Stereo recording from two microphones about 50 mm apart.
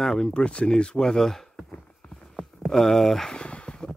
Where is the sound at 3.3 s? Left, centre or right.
Left.